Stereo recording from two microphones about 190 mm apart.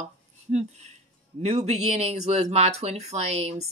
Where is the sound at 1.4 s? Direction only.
35° right (ahead or behind).